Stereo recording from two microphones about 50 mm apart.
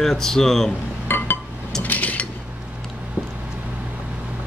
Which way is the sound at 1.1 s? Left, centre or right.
Left.